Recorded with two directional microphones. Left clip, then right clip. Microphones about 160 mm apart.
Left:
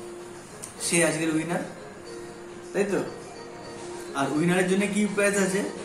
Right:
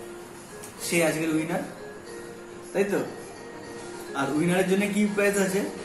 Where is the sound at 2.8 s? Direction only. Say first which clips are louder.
Right 1 dB; 15° left (ahead or behind).